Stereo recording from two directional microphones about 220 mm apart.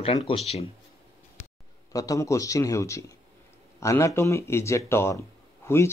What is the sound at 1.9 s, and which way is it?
Speech, 15° left (ahead or behind).